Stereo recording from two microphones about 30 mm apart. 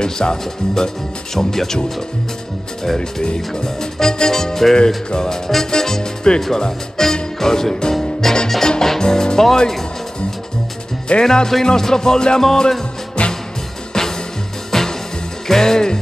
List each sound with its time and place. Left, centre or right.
0.0 s speech: left
1.3 s speech: centre
2.8 s speech: centre
4.7 s speech: left
6.3 s speech: left
7.0 s music: centre
11.1 s speech: left
11.6 s speech: centre
13.2 s music: left
13.9 s music: left